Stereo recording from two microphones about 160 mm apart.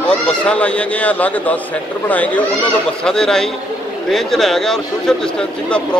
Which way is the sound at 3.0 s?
5° left (ahead or behind).